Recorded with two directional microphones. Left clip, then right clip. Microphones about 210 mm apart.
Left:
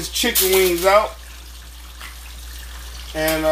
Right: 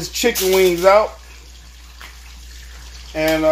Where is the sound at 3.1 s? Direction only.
20° right (ahead or behind).